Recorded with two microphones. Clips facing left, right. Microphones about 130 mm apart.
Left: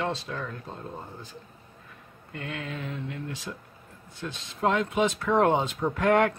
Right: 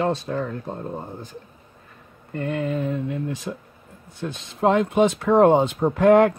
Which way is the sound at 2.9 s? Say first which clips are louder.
Right 9 dB; 55° right (ahead or behind).